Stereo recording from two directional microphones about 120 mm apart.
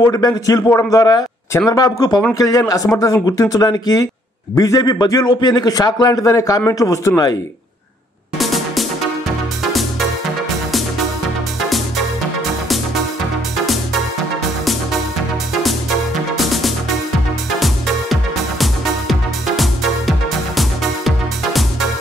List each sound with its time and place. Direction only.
0.1 s a man's voice: 30° left (ahead or behind)
8.4 s music: centre (ahead or behind)
14.6 s music: centre (ahead or behind)
16.3 s music: centre (ahead or behind)
18.6 s music: centre (ahead or behind)